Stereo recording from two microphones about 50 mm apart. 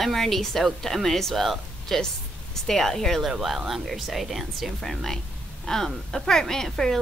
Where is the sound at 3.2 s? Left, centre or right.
Centre.